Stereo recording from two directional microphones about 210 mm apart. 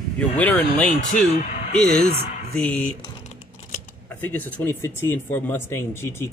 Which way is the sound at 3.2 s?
35° left (ahead or behind).